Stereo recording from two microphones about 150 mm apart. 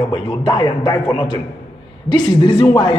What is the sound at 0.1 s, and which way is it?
A man's voice, 30° left (ahead or behind).